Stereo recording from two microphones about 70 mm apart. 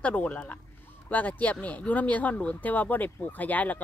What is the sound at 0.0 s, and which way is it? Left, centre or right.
Speech, left.